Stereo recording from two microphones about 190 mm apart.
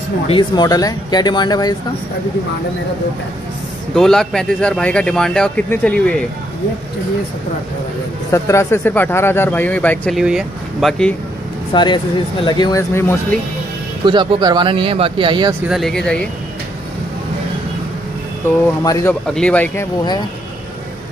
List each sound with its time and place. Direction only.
0.3 s speech: 25° left (ahead or behind)
3.9 s speech: centre (ahead or behind)
8.3 s speech: 15° left (ahead or behind)
11.7 s speech: 25° left (ahead or behind)
14.0 s speech: 25° right (ahead or behind)
15.7 s speech: centre (ahead or behind)
19.2 s speech: 5° left (ahead or behind)